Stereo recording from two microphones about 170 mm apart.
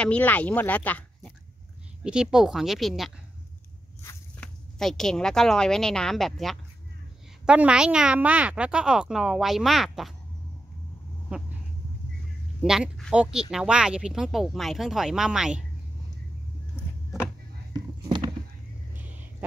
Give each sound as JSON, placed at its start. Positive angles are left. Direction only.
{"t": 0.0, "sound": "speech", "side_deg": 10}
{"t": 2.0, "sound": "speech", "side_deg": -5}
{"t": 4.0, "sound": "walk", "side_deg": 15}
{"t": 4.7, "sound": "speech", "side_deg": 0}
{"t": 12.6, "sound": "speech", "side_deg": -5}